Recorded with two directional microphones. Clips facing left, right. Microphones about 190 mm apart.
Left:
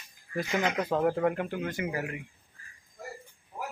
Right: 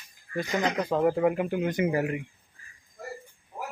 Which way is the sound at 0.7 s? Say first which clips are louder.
Right 4 dB; centre (ahead or behind).